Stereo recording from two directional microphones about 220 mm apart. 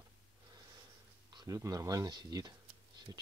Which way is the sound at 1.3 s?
15° right (ahead or behind).